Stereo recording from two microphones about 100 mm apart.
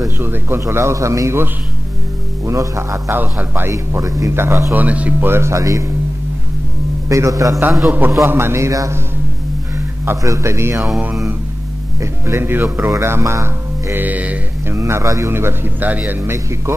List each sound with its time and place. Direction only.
0.2 s a man's voice: 20° right (ahead or behind)
3.2 s a man's voice: 20° right (ahead or behind)
3.7 s a man's voice: 35° right (ahead or behind)
4.7 s a man's voice: 15° right (ahead or behind); by 5.9 s 30° right (ahead or behind)
7.1 s a man's voice: 35° right (ahead or behind)
10.0 s a man's voice: 30° right (ahead or behind)
10.8 s mantra: 10° right (ahead or behind)
12.0 s a man's voice: 25° right (ahead or behind)
14.8 s a man's voice: 30° right (ahead or behind)